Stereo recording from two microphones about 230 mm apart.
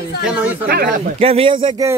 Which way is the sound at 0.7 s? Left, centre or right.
Right.